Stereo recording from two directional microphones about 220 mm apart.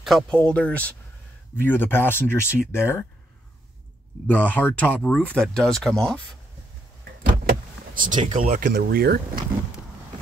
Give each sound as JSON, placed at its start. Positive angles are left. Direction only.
{"t": 0.0, "sound": "speech", "side_deg": 0}
{"t": 4.3, "sound": "speech", "side_deg": 5}
{"t": 7.4, "sound": "vehicle", "side_deg": -40}
{"t": 8.4, "sound": "speech", "side_deg": -40}